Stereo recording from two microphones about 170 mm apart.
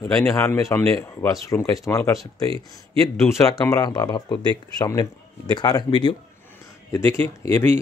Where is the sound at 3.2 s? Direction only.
15° left (ahead or behind).